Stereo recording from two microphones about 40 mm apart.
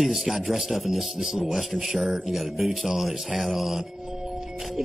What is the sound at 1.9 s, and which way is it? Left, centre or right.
Speech, centre.